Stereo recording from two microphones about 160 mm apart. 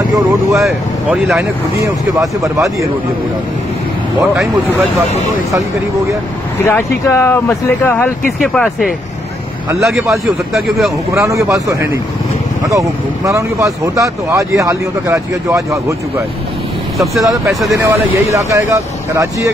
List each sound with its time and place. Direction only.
0.5 s a man's voice: centre (ahead or behind)
2.1 s speech: 20° right (ahead or behind)
6.6 s speech: 15° left (ahead or behind)
8.4 s a man's voice: centre (ahead or behind)
11.1 s speech: 20° right (ahead or behind)
17.5 s a man's voice: centre (ahead or behind)
17.7 s speech: 20° right (ahead or behind)